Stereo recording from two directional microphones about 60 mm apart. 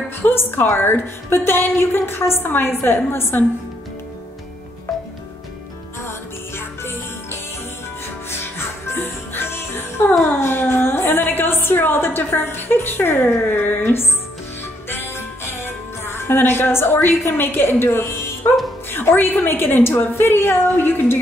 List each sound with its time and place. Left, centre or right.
0.2 s a woman's voice: left
6.0 s music: left
10.4 s a sound: left
12.3 s a woman's voice: left
14.9 s music: left
18.9 s a woman's voice: left